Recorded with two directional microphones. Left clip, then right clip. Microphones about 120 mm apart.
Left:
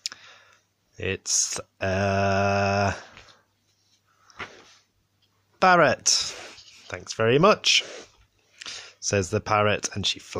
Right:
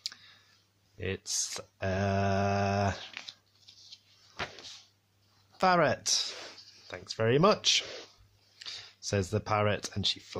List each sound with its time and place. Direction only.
0.0 s clicking: 30° left (ahead or behind)
0.9 s speech: 30° left (ahead or behind)
5.6 s speech: 30° left (ahead or behind)
6.5 s speech: 20° left (ahead or behind)